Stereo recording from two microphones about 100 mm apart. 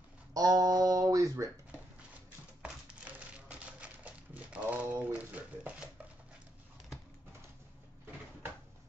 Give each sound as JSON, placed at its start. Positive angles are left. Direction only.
{"t": 0.3, "sound": "guitar", "side_deg": -40}
{"t": 3.4, "sound": "typewriter", "side_deg": -15}